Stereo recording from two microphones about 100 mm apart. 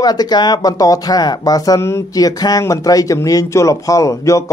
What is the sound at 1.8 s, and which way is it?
Speech, 25° left (ahead or behind).